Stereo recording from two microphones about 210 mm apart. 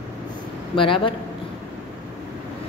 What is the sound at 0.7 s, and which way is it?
Speech, 25° left (ahead or behind).